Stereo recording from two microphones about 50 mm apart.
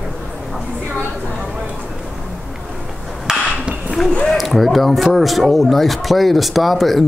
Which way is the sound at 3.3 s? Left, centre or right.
Centre.